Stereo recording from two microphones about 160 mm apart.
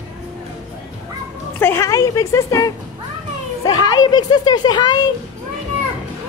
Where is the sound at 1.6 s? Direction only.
15° left (ahead or behind).